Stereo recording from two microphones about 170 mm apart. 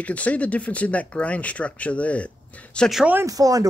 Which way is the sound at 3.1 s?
20° right (ahead or behind).